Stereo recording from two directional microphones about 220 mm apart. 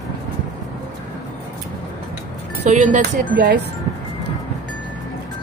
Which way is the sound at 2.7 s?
35° right (ahead or behind).